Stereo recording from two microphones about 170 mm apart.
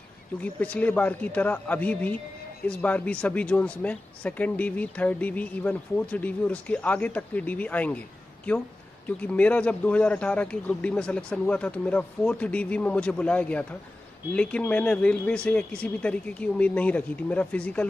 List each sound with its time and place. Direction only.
0.4 s speech: 10° left (ahead or behind)